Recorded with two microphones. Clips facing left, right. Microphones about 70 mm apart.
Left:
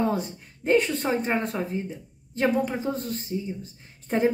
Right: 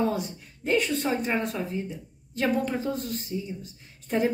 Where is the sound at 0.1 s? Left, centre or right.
Left.